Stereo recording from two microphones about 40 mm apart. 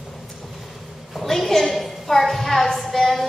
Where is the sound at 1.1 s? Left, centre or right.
Centre.